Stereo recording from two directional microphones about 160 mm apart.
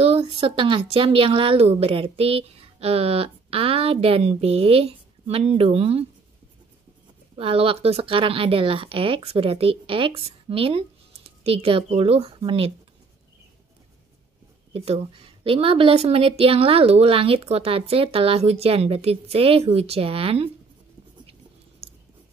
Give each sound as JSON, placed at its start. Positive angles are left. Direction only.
{"t": 0.0, "sound": "speech", "side_deg": -35}
{"t": 7.3, "sound": "speech", "side_deg": -35}
{"t": 15.4, "sound": "speech", "side_deg": -35}
{"t": 21.8, "sound": "a sound", "side_deg": -40}